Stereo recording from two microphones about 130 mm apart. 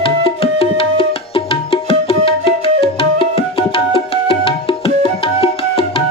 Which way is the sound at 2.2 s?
40° left (ahead or behind).